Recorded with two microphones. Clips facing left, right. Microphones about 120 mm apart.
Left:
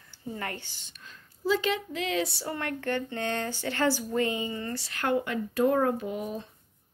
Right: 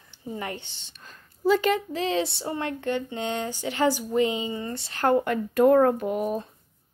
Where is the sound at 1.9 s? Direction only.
30° right (ahead or behind); by 6.5 s 50° right (ahead or behind).